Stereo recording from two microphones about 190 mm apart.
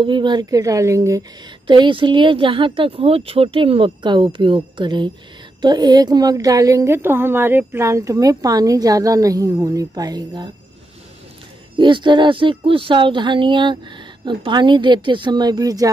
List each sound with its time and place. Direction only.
0.0 s a woman's voice: 25° right (ahead or behind)
11.8 s a woman's voice: 25° right (ahead or behind)